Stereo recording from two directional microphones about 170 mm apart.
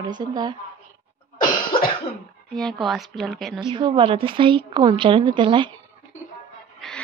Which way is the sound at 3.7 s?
30° right (ahead or behind).